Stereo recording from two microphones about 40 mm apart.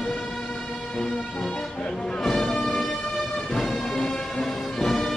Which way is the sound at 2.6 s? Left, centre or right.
Centre.